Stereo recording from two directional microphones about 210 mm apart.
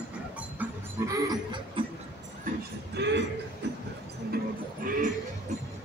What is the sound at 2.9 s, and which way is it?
Cough, 55° right (ahead or behind).